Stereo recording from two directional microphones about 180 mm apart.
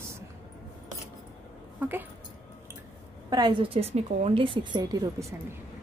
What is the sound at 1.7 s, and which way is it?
Speech, 10° right (ahead or behind).